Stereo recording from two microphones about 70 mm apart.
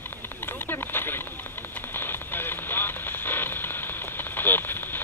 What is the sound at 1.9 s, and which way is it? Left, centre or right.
Radio, left.